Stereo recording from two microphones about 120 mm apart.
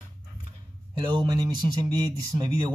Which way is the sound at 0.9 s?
40° right (ahead or behind).